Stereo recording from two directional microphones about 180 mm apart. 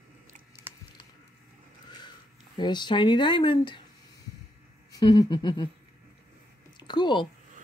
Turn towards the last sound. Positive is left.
turn(degrees=25)  # may be behind; listen again after turning